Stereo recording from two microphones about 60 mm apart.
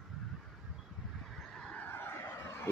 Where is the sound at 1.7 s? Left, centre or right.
Left.